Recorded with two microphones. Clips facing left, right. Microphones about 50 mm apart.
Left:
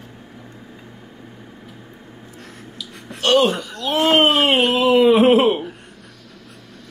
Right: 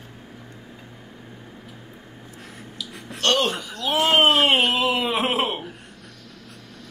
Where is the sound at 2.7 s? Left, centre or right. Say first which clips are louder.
Even; centre.